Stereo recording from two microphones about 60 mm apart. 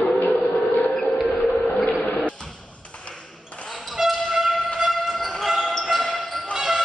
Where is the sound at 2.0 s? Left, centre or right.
Left.